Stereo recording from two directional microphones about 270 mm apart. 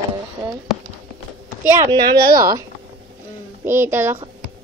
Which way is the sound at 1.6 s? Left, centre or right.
Centre.